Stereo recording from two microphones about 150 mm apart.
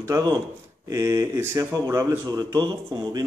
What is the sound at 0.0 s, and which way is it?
A man's voice, 25° right (ahead or behind).